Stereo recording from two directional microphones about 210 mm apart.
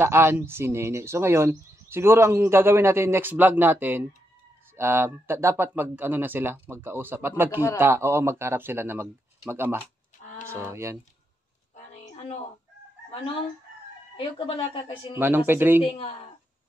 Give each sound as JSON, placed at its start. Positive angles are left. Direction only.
{"t": 0.0, "sound": "speech", "side_deg": -10}
{"t": 11.7, "sound": "a sound", "side_deg": 35}
{"t": 14.1, "sound": "a woman's voice", "side_deg": 25}
{"t": 15.1, "sound": "speech", "side_deg": -10}
{"t": 15.8, "sound": "a woman's voice", "side_deg": 25}